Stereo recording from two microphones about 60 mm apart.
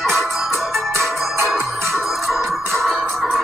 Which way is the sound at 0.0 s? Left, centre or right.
Centre.